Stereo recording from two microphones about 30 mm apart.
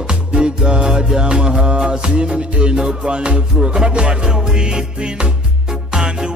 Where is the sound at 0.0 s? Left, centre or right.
Right.